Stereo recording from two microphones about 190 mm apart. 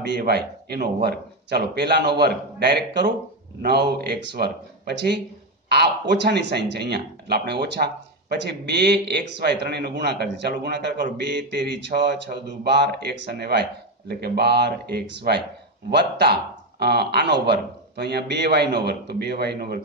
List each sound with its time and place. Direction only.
0.0 s speech: 60° right (ahead or behind)